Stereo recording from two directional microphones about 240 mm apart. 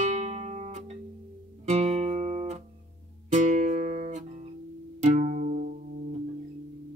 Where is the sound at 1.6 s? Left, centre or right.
Right.